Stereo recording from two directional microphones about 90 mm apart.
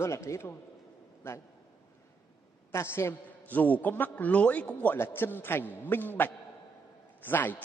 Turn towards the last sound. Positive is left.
turn(degrees=20)  # may be behind; listen again after turning